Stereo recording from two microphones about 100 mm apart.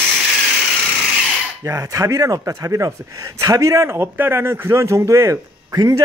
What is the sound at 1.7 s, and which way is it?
A man's voice, 30° right (ahead or behind).